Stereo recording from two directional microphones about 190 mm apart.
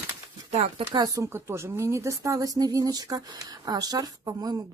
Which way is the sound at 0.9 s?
15° right (ahead or behind).